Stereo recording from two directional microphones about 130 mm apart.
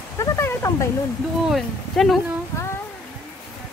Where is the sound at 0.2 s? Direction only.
20° left (ahead or behind).